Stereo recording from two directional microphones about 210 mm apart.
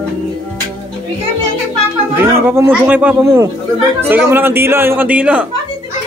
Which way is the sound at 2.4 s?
10° right (ahead or behind).